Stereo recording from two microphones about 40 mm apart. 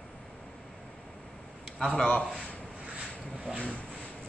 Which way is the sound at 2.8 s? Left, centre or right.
Right.